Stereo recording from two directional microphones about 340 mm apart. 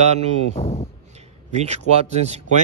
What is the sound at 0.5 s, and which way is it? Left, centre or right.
Speech, centre.